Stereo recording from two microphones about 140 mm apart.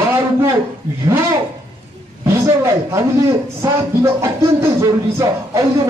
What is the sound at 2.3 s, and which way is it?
A man's voice, 20° right (ahead or behind).